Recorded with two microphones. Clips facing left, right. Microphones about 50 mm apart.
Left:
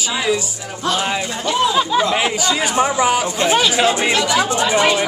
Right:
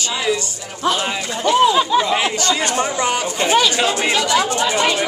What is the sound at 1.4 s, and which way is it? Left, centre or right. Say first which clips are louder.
Speech: right 4 dB; centre.